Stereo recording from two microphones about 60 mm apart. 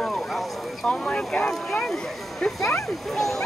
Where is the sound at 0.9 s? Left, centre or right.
Centre.